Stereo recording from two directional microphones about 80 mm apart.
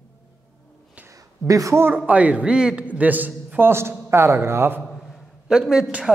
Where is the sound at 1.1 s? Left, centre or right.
Right.